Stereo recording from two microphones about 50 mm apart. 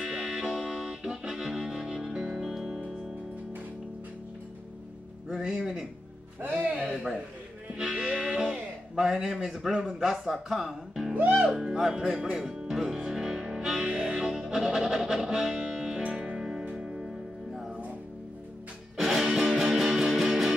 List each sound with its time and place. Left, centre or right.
0.0 s music: centre
5.3 s speech: centre
6.4 s a man's voice: right
6.8 s a man's voice: centre
11.1 s speech: right
11.5 s music: centre
16.3 s music: centre
18.9 s music: centre